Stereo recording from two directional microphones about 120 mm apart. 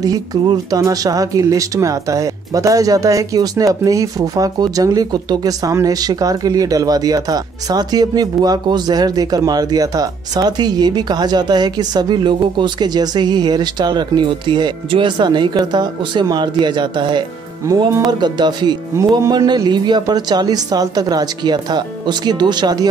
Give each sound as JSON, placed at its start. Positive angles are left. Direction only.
{"t": 0.0, "sound": "speech", "side_deg": -30}